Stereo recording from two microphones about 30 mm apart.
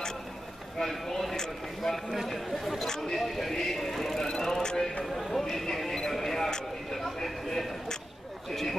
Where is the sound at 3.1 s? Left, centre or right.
Centre.